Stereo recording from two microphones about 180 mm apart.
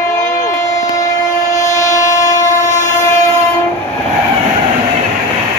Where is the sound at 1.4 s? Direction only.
40° left (ahead or behind).